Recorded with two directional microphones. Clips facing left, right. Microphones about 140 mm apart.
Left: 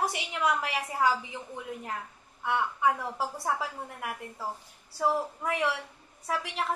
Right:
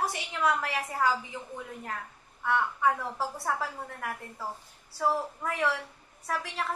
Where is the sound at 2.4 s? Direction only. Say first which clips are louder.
Even; 15° left (ahead or behind).